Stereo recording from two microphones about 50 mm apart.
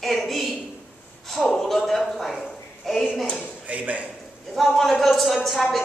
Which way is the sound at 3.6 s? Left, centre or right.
Right.